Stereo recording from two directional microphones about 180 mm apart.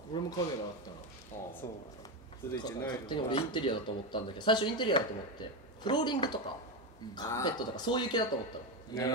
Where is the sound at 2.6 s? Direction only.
20° left (ahead or behind).